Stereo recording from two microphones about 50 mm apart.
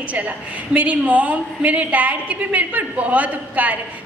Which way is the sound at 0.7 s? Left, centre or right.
Right.